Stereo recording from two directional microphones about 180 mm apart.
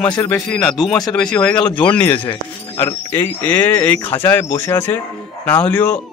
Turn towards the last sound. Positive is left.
turn(degrees=10)  # may be behind; listen again after turning